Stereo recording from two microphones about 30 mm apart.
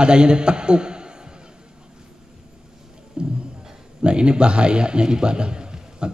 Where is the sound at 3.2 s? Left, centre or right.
Right.